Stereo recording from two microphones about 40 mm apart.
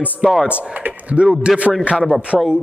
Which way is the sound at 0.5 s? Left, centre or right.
Right.